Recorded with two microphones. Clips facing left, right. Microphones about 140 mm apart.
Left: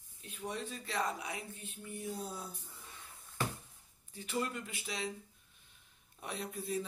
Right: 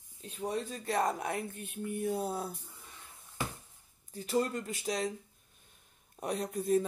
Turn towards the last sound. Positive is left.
turn(degrees=-50)  # may be behind; listen again after turning